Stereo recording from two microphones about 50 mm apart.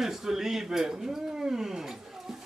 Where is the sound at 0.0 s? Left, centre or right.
Centre.